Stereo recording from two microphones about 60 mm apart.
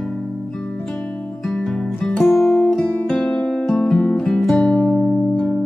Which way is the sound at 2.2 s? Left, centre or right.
Centre.